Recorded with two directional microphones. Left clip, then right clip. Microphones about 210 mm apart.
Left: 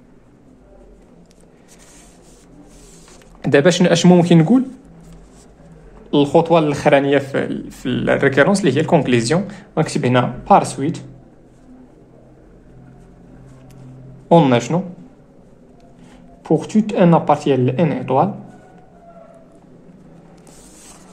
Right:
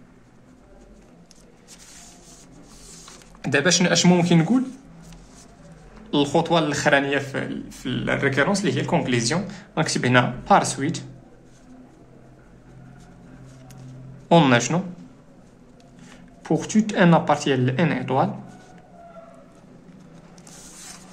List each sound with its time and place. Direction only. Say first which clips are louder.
3.4 s speech: left 6 dB; 25° left (ahead or behind)
6.0 s speech: left 7 dB; 15° left (ahead or behind)
9.8 s a woman's voice: left 3 dB; 15° left (ahead or behind)
14.3 s speech: left 4 dB; 5° left (ahead or behind)
16.4 s a woman's voice: left 5 dB; 10° left (ahead or behind)